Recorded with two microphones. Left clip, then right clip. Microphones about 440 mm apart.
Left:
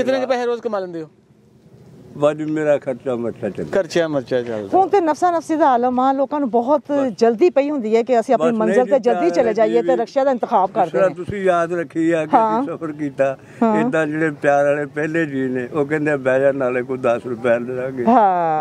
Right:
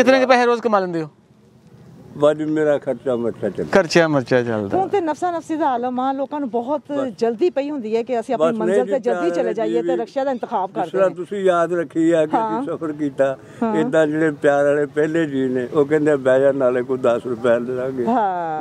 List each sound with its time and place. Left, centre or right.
0.0 s a man's voice: right
2.1 s speech: left
3.7 s speech: centre
4.7 s speech: left